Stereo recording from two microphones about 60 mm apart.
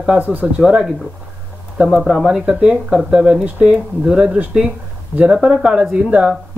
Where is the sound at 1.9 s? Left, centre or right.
Centre.